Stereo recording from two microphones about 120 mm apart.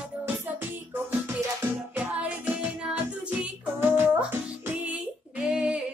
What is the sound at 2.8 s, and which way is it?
Music, 10° right (ahead or behind).